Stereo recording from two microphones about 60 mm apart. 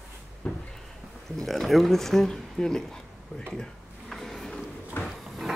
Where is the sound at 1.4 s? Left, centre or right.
Centre.